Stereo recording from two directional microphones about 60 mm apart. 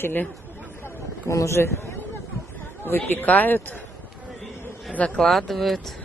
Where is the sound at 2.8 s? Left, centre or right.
Left.